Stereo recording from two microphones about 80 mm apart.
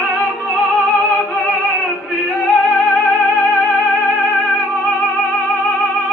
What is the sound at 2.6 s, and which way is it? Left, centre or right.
Music, centre.